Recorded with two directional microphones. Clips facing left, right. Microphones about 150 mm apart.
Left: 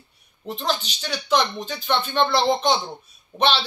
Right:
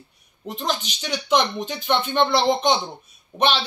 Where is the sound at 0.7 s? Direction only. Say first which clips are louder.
Even; 15° right (ahead or behind).